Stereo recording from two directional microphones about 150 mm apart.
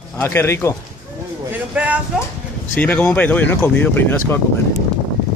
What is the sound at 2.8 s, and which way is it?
Speech, 10° left (ahead or behind).